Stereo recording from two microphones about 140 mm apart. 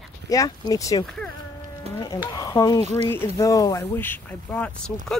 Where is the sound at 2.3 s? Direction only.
25° left (ahead or behind).